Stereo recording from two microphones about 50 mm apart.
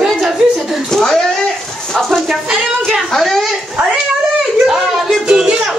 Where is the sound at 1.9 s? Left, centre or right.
Centre.